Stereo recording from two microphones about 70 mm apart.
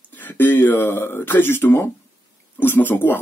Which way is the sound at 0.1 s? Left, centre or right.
Left.